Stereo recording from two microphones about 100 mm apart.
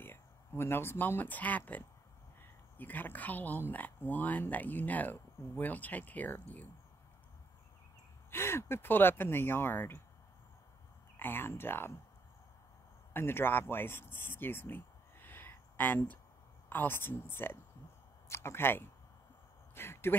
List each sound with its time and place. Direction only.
0.0 s speech: 25° left (ahead or behind)
8.3 s speech: 25° left (ahead or behind)
11.1 s speech: 20° left (ahead or behind)
13.1 s speech: 20° left (ahead or behind)
19.7 s a sound: 25° left (ahead or behind)